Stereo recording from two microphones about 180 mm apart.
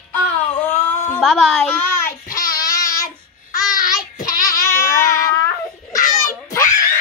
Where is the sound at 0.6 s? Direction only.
10° left (ahead or behind).